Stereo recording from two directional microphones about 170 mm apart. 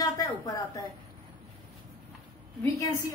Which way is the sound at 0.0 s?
20° left (ahead or behind).